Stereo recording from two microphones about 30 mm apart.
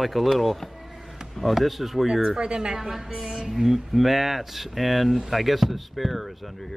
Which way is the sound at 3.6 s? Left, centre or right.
Centre.